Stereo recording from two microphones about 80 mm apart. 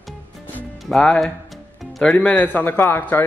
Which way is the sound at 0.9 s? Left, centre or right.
Centre.